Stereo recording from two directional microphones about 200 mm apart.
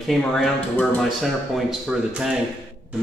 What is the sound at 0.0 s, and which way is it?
A man's voice, centre (ahead or behind).